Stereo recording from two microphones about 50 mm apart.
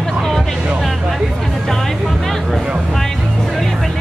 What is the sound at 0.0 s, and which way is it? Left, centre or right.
Music, centre.